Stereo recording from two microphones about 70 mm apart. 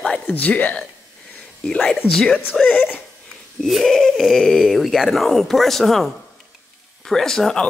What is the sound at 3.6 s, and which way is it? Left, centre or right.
Speech, centre.